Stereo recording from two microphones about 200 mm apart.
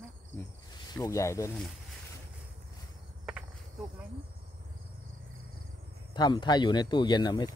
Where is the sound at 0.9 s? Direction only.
15° left (ahead or behind).